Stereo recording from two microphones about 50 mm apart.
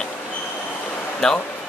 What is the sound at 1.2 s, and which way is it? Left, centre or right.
Speech, centre.